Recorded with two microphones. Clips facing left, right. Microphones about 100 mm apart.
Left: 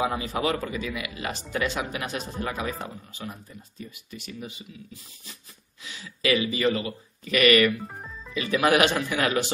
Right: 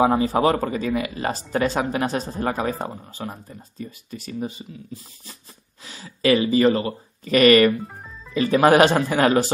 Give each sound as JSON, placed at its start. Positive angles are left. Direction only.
{"t": 0.0, "sound": "speech", "side_deg": -35}